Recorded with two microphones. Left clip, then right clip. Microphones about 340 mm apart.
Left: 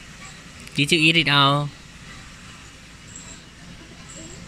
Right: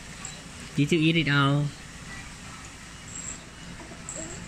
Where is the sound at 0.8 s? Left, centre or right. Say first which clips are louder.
Left 7 dB; centre.